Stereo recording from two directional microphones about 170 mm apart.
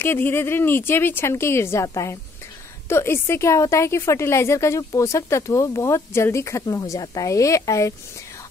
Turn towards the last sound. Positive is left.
turn(degrees=20)  # may be behind; listen again after turning